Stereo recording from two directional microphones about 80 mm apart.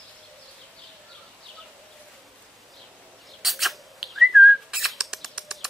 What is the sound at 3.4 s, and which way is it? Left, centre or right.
Whistling, centre.